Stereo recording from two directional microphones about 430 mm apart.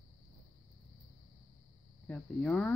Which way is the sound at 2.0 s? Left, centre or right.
Centre.